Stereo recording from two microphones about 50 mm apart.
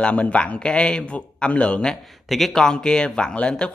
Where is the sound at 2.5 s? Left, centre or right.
Centre.